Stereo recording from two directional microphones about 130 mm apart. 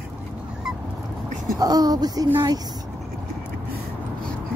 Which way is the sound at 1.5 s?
30° right (ahead or behind).